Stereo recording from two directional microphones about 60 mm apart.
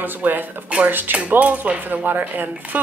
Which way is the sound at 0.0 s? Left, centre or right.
Right.